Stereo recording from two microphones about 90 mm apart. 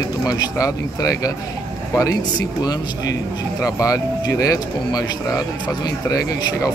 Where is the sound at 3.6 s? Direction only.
40° left (ahead or behind).